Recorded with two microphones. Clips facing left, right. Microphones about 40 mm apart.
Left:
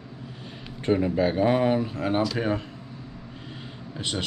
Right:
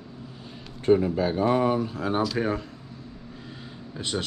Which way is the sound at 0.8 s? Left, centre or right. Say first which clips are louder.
Right 1 dB; left.